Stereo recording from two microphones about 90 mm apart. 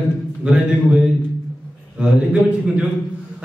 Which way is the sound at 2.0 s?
15° right (ahead or behind).